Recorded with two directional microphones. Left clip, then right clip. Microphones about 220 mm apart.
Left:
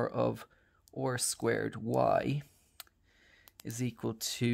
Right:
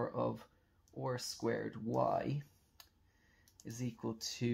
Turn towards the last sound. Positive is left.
turn(degrees=45)  # may be behind; listen again after turning